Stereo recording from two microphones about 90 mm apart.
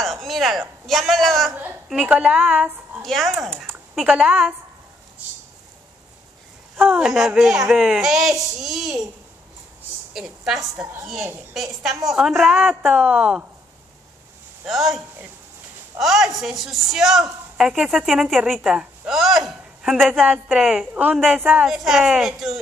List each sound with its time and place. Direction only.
0.0 s a man's voice: centre (ahead or behind)
1.5 s a woman's voice: 20° right (ahead or behind)
3.0 s a woman's voice: centre (ahead or behind)
7.0 s a woman's voice: 5° right (ahead or behind)
10.1 s a woman's voice: 5° right (ahead or behind)
13.0 s a woman's voice: 10° right (ahead or behind)
14.7 s a woman's voice: centre (ahead or behind)
20.9 s a woman's voice: 15° right (ahead or behind)
21.6 s a woman's voice: 5° right (ahead or behind)